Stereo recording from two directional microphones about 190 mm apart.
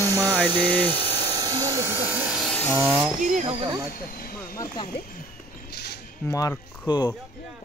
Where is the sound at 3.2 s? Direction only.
40° right (ahead or behind).